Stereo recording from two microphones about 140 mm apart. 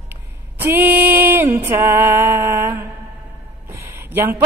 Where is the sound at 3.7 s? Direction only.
15° right (ahead or behind).